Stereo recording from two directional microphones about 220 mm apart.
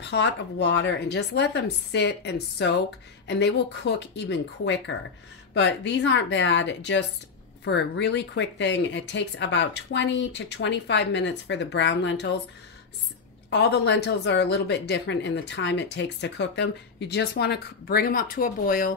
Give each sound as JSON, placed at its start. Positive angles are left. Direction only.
{"t": 0.0, "sound": "speech", "side_deg": 50}
{"t": 13.5, "sound": "speech", "side_deg": 50}